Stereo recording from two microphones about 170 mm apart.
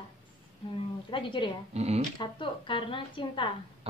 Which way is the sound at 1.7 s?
40° right (ahead or behind).